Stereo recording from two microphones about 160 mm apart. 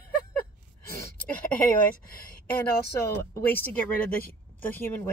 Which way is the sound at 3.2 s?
15° left (ahead or behind).